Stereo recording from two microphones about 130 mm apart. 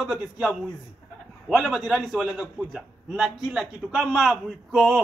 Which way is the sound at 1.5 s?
Centre (ahead or behind).